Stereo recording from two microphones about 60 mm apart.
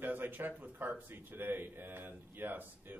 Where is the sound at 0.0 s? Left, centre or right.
Right.